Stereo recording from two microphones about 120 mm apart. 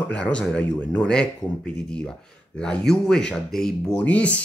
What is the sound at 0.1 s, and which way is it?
Speech, 10° left (ahead or behind).